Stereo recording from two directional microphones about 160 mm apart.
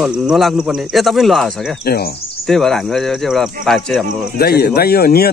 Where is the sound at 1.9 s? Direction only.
75° left (ahead or behind).